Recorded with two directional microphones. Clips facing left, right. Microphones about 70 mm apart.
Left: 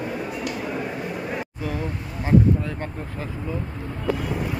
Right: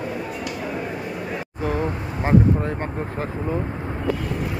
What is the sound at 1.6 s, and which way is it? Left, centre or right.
Vehicle, right.